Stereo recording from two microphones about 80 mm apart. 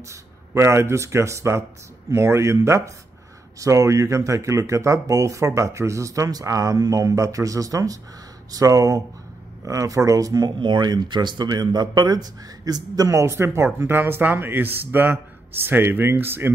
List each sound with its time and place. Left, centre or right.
0.1 s speech: right
10.6 s a man's voice: right